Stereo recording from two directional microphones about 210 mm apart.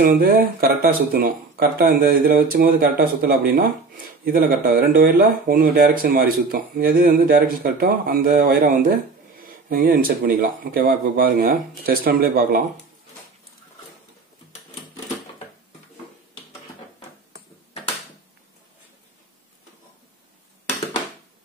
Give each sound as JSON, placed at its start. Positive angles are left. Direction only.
{"t": 0.0, "sound": "speech", "side_deg": -45}